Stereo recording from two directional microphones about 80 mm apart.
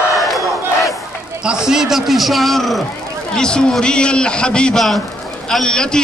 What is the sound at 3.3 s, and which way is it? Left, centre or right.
A man's voice, centre.